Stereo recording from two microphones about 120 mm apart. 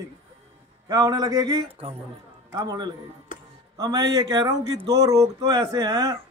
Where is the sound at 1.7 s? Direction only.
55° right (ahead or behind).